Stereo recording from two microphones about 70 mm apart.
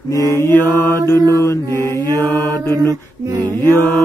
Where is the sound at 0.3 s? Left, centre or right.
Left.